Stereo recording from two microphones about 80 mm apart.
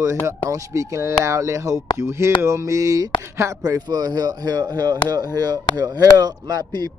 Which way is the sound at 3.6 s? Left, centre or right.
Right.